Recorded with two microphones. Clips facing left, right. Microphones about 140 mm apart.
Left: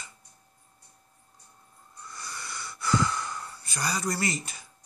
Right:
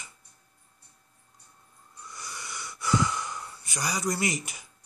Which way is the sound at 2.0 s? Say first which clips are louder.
Left 1 dB; 15° right (ahead or behind).